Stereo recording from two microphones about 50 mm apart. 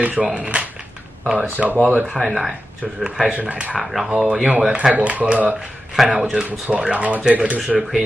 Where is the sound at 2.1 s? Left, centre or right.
Centre.